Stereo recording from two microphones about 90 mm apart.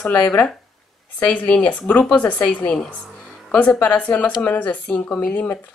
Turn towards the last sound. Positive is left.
turn(degrees=20)  # may be behind; listen again after turning